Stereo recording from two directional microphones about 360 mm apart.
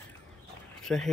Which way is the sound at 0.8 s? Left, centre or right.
Centre.